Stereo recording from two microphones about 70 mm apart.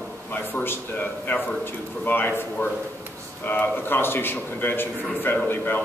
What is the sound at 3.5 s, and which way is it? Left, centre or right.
A man's voice, left.